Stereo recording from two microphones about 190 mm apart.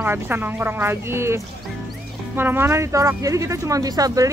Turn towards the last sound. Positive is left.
turn(degrees=-20)  # may be behind; listen again after turning